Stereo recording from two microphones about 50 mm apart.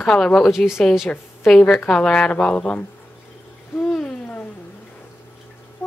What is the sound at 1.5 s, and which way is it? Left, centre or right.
A woman's voice, centre.